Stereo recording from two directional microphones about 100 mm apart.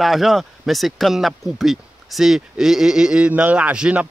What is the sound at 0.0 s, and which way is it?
Speech, centre (ahead or behind).